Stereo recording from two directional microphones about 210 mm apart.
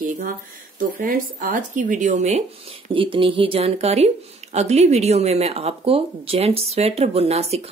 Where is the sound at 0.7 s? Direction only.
40° right (ahead or behind).